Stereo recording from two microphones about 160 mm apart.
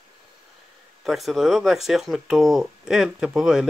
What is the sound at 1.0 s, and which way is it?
Speech, centre (ahead or behind).